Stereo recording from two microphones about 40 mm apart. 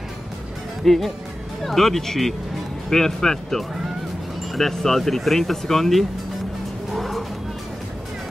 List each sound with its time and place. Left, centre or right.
0.8 s speech: centre
6.9 s vehicle: centre